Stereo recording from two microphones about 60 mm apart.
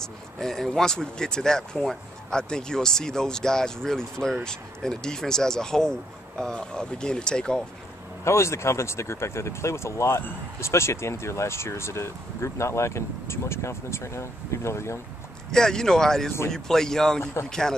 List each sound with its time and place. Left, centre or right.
0.0 s speech: centre
8.2 s speech: left
15.5 s speech: centre
17.2 s speech: left
17.5 s speech: centre